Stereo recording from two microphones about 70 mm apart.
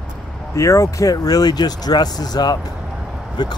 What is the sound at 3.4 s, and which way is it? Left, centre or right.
Speech, left.